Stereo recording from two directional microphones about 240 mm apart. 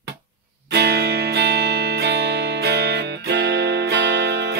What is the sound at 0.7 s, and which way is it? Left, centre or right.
Music, right.